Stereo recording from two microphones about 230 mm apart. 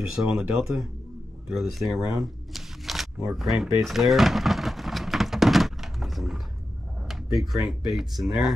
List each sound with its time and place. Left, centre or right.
0.1 s speech: centre
3.3 s a sound: centre
7.1 s speech: centre